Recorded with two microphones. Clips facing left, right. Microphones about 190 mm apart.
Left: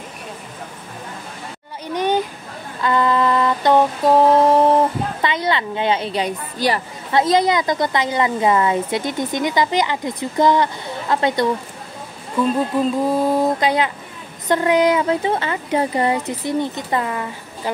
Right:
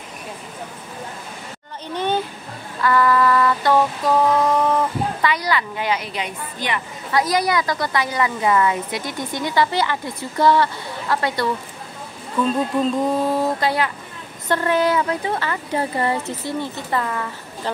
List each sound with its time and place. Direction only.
2.0 s a sound: 15° left (ahead or behind)
2.8 s mantra: 20° left (ahead or behind)
5.2 s a woman's voice: 25° left (ahead or behind)